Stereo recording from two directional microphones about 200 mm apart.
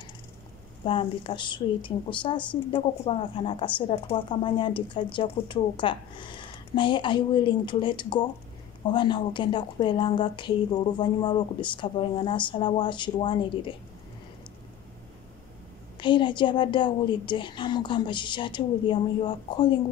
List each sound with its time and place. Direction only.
0.8 s a woman's voice: 25° left (ahead or behind)
16.0 s a woman's voice: 25° left (ahead or behind)